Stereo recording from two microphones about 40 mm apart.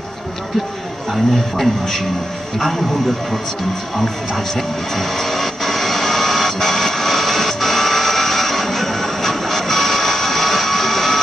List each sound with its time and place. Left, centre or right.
1.1 s a man's voice: centre
4.6 s music: centre